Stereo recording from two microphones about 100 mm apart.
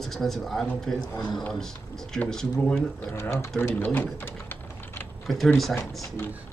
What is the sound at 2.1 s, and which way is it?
Speech, 5° left (ahead or behind).